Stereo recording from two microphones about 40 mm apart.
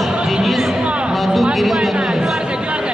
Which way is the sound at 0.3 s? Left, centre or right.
Centre.